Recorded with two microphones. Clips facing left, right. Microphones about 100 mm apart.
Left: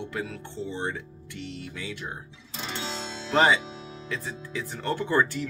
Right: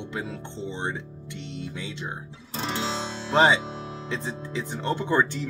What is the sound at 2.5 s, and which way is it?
Music, 40° right (ahead or behind).